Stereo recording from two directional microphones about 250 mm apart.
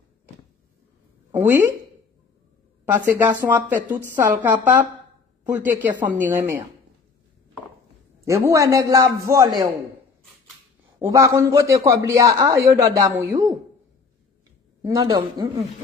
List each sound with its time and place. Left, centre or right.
2.8 s a man's voice: centre
8.3 s a man's voice: centre
11.0 s a man's voice: centre
14.8 s a man's voice: centre